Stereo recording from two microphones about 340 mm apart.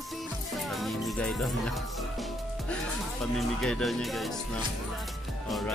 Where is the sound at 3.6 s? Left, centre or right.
Centre.